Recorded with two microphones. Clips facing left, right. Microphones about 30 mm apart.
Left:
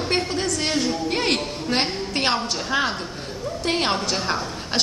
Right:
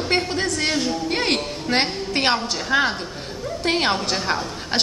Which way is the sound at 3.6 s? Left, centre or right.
Centre.